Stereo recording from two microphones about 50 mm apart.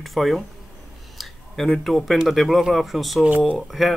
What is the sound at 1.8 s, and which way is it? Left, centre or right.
Speech, centre.